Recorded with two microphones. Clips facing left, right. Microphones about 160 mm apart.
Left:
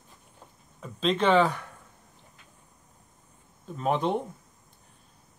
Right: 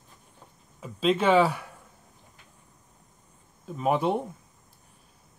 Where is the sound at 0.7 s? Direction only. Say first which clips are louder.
Right 2 dB; 5° right (ahead or behind).